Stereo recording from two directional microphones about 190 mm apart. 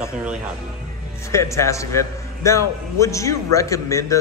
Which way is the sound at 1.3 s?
15° left (ahead or behind).